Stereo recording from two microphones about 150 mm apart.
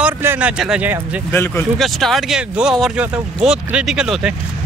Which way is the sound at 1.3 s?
15° left (ahead or behind).